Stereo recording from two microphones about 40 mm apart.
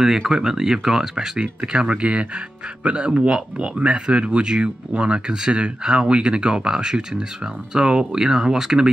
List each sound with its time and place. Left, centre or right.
0.3 s speech: centre